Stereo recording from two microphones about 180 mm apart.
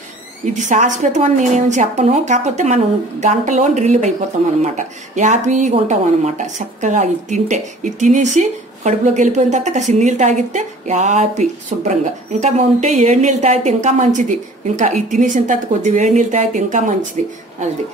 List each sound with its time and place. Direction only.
0.5 s a woman's voice: 45° right (ahead or behind)